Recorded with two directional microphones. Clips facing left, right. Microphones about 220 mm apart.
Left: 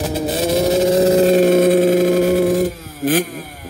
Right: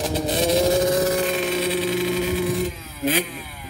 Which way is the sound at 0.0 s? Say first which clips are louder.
Left 3 dB; centre (ahead or behind).